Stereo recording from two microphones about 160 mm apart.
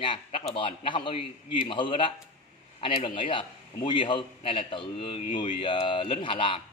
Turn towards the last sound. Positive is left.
turn(degrees=35)  # may be behind; listen again after turning